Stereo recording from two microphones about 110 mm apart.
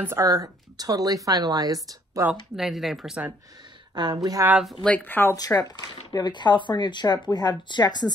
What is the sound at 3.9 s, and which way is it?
Speech, 40° right (ahead or behind).